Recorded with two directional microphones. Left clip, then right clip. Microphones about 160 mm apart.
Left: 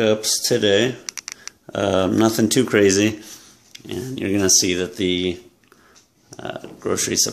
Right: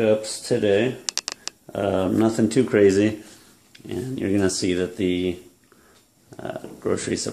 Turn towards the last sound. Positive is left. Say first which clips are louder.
# left 4 dB
turn(degrees=0)  # may be behind; listen again after turning